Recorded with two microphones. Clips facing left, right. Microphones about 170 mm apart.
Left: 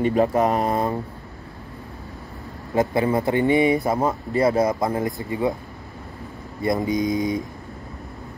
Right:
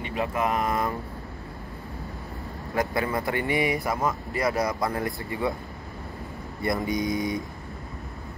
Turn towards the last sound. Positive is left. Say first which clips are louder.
# left 5 dB
turn(degrees=20)  # may be behind; listen again after turning